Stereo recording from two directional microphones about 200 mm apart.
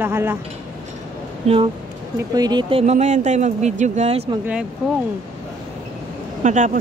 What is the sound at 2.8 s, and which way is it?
Speech, 35° right (ahead or behind).